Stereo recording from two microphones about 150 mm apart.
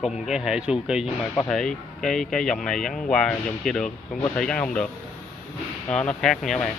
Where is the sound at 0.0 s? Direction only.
5° right (ahead or behind).